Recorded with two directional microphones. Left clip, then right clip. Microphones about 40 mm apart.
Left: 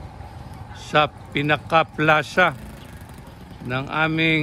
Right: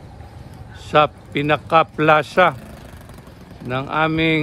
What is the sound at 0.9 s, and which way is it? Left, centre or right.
A man's voice, centre.